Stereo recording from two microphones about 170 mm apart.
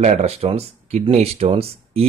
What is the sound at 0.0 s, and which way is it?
Speech, 40° right (ahead or behind).